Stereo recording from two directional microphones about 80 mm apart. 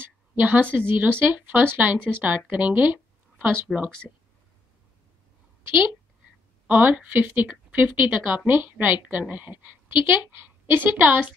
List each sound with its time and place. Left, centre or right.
0.0 s a woman's voice: right
6.7 s a woman's voice: centre